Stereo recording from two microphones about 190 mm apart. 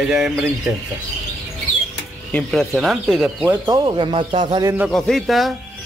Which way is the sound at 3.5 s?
20° right (ahead or behind).